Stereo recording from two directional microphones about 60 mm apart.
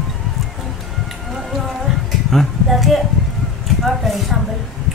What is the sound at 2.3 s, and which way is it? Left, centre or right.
Cutlery, centre.